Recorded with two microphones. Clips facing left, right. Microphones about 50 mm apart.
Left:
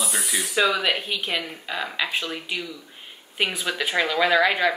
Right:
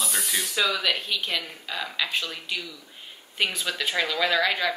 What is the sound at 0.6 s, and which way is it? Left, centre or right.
A woman's voice, left.